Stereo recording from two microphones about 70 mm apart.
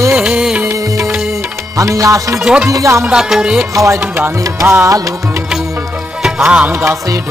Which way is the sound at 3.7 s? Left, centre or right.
Right.